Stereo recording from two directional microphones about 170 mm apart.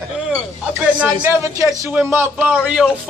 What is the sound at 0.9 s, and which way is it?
A man's voice, 15° right (ahead or behind).